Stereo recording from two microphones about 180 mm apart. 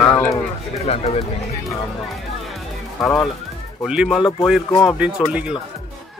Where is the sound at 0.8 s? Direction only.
35° left (ahead or behind).